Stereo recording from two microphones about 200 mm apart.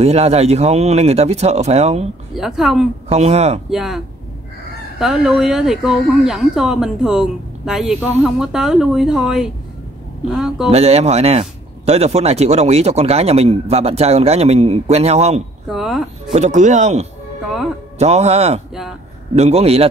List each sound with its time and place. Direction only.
0.0 s speech: 30° right (ahead or behind)
2.3 s speech: centre (ahead or behind)
3.1 s speech: 30° right (ahead or behind)
3.7 s speech: centre (ahead or behind)
10.7 s speech: 30° right (ahead or behind)
15.7 s speech: centre (ahead or behind)
16.3 s speech: 35° right (ahead or behind)